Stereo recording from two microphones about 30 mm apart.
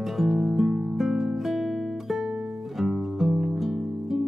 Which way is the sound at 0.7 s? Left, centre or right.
Centre.